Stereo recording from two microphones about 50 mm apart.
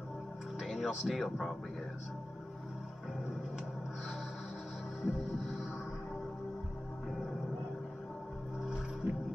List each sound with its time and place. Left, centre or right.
0.6 s music: centre
1.0 s speech: centre
5.0 s music: centre
9.0 s music: right